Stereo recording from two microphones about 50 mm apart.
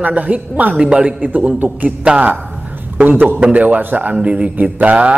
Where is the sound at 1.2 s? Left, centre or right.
Right.